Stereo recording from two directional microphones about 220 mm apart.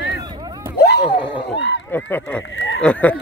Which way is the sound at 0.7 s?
50° left (ahead or behind).